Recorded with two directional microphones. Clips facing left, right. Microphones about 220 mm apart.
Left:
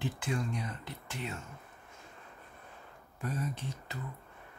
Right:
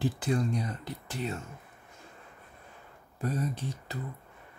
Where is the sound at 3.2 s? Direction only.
35° right (ahead or behind).